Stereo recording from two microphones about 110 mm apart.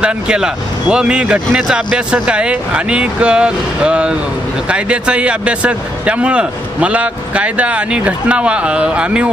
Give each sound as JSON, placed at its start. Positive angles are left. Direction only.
{"t": 0.0, "sound": "a man's voice", "side_deg": -10}